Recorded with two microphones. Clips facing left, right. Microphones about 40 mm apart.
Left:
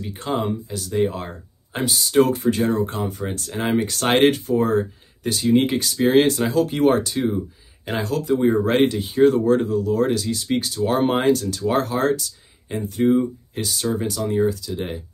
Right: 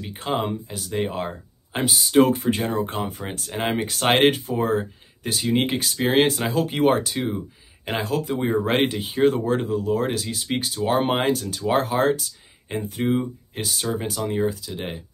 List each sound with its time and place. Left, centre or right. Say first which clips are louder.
0.0 s speech: left 1 dB; centre